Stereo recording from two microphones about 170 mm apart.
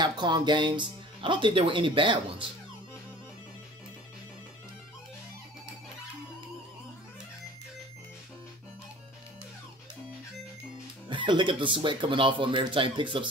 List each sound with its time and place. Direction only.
0.0 s speech: 25° right (ahead or behind)
11.1 s speech: 30° right (ahead or behind)